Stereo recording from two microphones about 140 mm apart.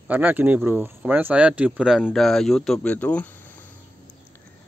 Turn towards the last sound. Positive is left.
turn(degrees=15)  # may be behind; listen again after turning